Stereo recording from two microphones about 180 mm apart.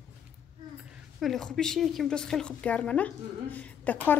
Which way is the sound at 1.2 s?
Centre (ahead or behind).